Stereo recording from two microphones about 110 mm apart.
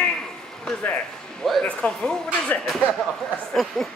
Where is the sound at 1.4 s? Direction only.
5° left (ahead or behind).